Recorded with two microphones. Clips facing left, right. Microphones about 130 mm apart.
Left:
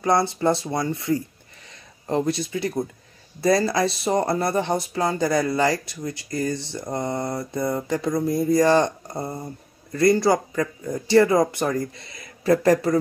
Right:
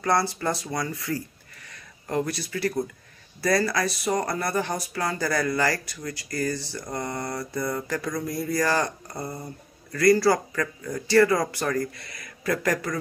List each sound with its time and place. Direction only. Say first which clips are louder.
0.0 s speech: left 4 dB; 20° left (ahead or behind)